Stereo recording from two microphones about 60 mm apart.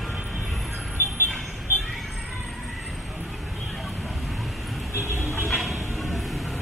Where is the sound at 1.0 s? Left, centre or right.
Left.